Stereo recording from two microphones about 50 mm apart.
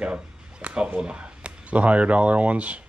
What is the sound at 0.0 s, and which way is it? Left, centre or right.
Speech, right.